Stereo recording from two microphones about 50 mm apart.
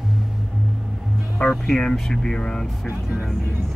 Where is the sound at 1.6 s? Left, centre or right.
Centre.